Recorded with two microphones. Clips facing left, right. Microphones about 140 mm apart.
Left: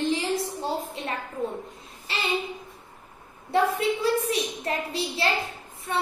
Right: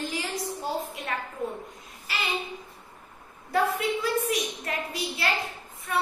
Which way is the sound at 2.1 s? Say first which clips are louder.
Left 1 dB; 25° left (ahead or behind).